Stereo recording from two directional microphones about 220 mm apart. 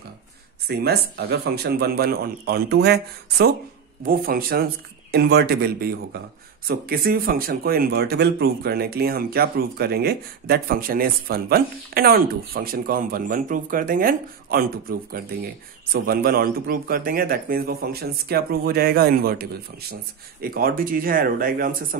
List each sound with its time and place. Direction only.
0.7 s speech: 45° right (ahead or behind)